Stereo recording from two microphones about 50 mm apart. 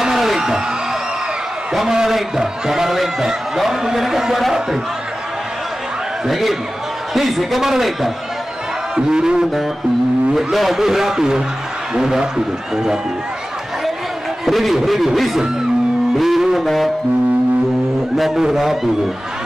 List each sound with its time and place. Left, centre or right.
0.0 s music: centre
1.7 s a man's voice: centre
6.2 s a man's voice: centre
8.9 s a man's voice: centre
10.3 s a man's voice: centre
14.4 s a man's voice: centre
18.1 s a man's voice: centre